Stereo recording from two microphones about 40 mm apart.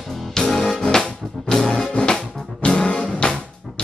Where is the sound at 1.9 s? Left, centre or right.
Left.